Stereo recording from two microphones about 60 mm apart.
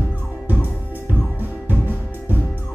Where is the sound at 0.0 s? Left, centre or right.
Right.